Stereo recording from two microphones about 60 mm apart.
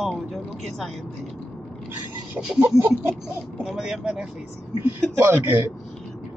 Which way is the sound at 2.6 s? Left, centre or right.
Right.